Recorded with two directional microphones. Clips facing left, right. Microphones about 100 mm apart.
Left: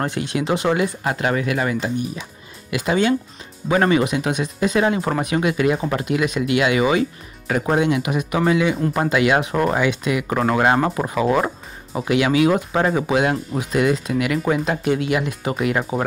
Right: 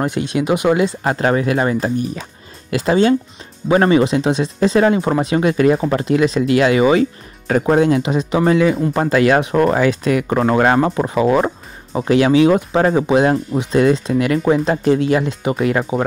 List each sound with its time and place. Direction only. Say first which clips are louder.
0.0 s speech: right 4 dB; 20° right (ahead or behind); by 10.2 s 40° right (ahead or behind)
10.3 s speech: right 3 dB; 25° right (ahead or behind)
15.9 s speech: right 4 dB; 15° right (ahead or behind)